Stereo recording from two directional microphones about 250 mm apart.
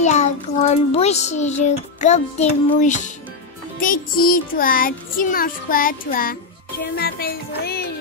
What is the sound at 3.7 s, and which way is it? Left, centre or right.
Music, left.